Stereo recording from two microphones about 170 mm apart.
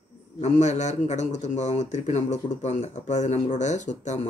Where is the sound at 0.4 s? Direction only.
45° left (ahead or behind).